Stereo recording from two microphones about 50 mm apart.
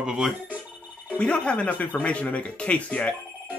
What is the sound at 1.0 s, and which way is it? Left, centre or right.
Speech, left.